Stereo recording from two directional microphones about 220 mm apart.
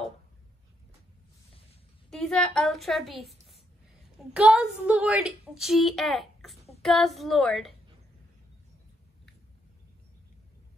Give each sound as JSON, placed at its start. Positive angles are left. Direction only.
{"t": 2.0, "sound": "a woman's voice", "side_deg": 5}